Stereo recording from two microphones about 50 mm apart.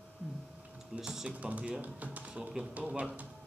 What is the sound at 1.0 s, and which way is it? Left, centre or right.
Speech, centre.